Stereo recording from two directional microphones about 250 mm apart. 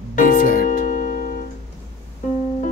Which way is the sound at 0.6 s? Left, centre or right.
Left.